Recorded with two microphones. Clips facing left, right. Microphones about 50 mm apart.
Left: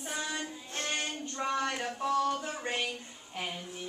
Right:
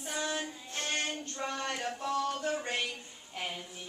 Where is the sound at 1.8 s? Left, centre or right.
Centre.